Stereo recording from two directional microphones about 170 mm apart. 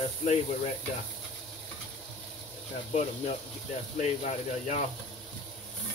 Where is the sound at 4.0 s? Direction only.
45° left (ahead or behind).